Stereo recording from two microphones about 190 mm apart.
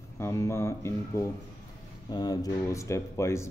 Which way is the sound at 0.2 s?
15° left (ahead or behind).